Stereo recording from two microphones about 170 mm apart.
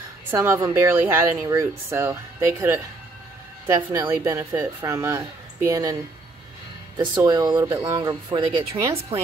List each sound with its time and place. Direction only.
0.3 s speech: 15° right (ahead or behind)
7.0 s speech: 25° right (ahead or behind)